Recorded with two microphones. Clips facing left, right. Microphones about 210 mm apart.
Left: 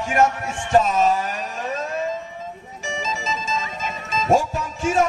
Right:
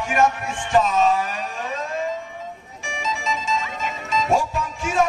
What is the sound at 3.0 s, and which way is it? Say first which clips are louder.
Music: right 2 dB; 40° left (ahead or behind).